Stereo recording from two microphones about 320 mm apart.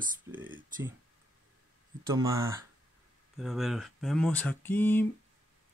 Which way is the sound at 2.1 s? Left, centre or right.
Centre.